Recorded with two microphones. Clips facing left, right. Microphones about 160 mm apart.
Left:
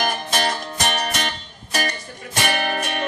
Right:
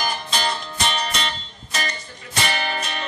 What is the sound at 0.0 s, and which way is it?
Music, 55° left (ahead or behind).